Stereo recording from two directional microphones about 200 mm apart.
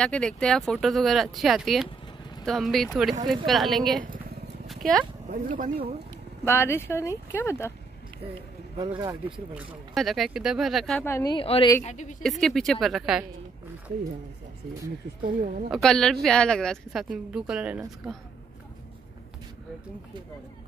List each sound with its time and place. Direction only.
0.0 s a woman's voice: 5° left (ahead or behind)
4.6 s horse: 5° left (ahead or behind)
5.3 s speech: 40° right (ahead or behind)
6.4 s speech: 10° left (ahead or behind)
8.7 s speech: 20° right (ahead or behind)
9.6 s a woman's voice: 5° right (ahead or behind)
11.1 s speech: 15° left (ahead or behind)
11.3 s a woman's voice: 25° left (ahead or behind)
11.8 s a woman's voice: 35° left (ahead or behind)
12.2 s a woman's voice: centre (ahead or behind)
15.2 s a woman's voice: 40° right (ahead or behind)
15.7 s a woman's voice: 5° left (ahead or behind)